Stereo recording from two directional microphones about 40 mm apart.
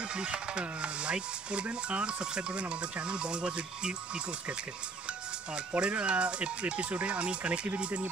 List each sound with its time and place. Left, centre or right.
0.1 s speech: right